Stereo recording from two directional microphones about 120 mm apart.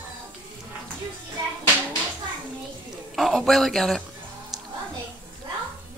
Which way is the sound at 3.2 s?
Centre (ahead or behind).